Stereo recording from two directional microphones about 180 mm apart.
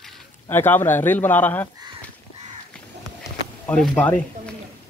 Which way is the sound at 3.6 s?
5° left (ahead or behind).